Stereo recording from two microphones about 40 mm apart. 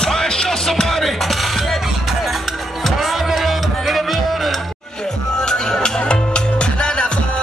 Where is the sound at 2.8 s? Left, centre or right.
Centre.